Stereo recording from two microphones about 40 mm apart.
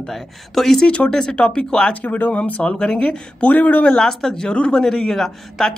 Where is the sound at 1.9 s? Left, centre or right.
Left.